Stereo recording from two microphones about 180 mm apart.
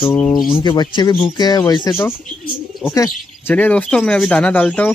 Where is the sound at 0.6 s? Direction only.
25° left (ahead or behind).